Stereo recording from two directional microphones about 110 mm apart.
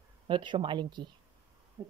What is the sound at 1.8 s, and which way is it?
Owl, 30° right (ahead or behind).